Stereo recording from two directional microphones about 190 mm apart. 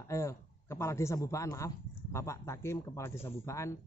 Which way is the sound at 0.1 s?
15° left (ahead or behind).